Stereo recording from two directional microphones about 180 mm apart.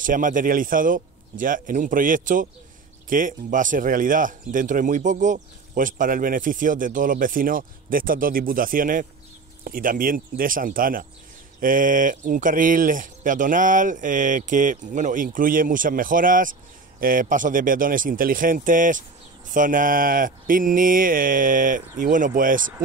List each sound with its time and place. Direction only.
0.0 s speech: 45° right (ahead or behind)